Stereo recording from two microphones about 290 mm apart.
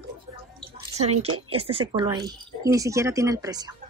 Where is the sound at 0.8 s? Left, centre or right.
Right.